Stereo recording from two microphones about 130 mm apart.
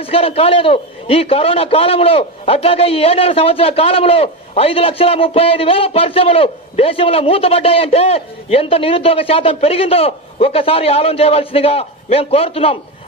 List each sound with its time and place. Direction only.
0.0 s a man's voice: 50° left (ahead or behind)